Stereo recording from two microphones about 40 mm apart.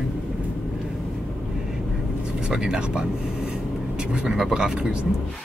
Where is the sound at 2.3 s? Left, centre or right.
Centre.